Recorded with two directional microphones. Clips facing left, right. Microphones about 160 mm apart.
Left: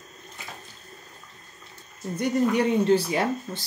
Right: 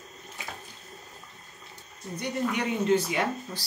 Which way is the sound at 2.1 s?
35° left (ahead or behind).